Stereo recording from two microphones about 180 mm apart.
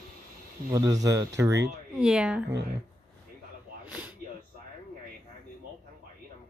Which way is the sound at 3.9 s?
5° right (ahead or behind).